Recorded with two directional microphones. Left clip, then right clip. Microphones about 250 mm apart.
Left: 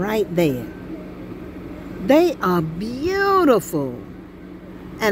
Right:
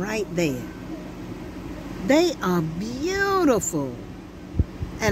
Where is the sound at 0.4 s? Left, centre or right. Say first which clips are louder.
Left 5 dB; centre.